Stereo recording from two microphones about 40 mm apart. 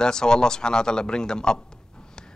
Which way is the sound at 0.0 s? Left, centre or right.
Centre.